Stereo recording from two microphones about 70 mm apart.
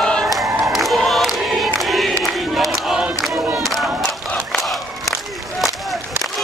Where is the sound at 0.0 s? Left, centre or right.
Centre.